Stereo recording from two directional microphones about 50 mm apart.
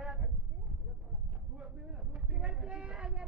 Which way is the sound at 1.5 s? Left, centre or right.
Right.